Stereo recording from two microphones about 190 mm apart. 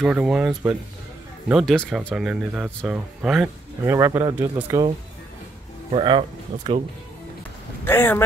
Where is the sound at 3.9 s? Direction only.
15° right (ahead or behind).